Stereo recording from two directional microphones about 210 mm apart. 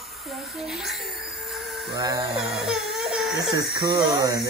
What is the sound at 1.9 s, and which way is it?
Speech, 15° right (ahead or behind).